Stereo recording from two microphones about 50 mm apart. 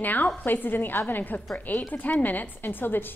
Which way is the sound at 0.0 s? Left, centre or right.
Left.